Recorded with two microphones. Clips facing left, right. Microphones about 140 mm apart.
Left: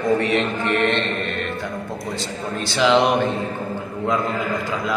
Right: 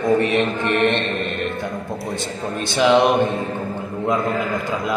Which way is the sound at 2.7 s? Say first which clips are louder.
Right 2 dB; 20° right (ahead or behind).